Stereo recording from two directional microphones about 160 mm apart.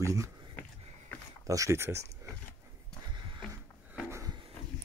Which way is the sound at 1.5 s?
20° right (ahead or behind).